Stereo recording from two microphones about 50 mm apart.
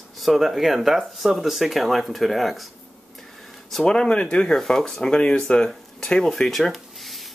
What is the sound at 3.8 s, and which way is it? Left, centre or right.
Speech, centre.